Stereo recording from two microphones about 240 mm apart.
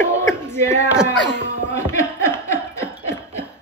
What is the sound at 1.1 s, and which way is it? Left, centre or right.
Speech, left.